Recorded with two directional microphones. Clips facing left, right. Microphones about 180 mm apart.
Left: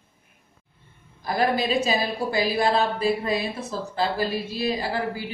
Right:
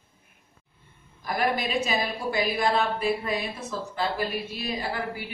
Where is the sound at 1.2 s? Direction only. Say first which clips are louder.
Left 4 dB; 30° left (ahead or behind).